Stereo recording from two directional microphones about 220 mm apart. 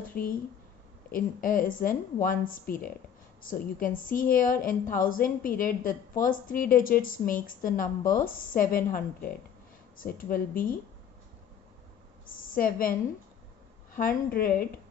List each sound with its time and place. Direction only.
0.0 s a woman's voice: 40° left (ahead or behind)
12.3 s a woman's voice: 40° left (ahead or behind)
13.9 s a woman's voice: 40° left (ahead or behind)